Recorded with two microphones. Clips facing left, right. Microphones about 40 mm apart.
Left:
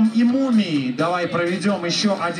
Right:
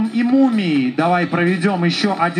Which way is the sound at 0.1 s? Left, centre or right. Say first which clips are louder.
Right 3 dB; right.